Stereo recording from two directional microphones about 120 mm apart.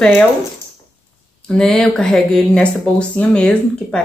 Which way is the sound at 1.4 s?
5° left (ahead or behind).